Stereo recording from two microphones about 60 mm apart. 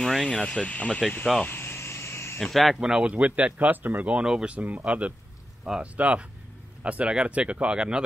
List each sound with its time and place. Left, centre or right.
0.0 s speech: centre
1.5 s vehicle: left
2.4 s speech: centre
2.8 s speech: centre; by 4.1 s right
4.1 s speech: centre
4.6 s speech: right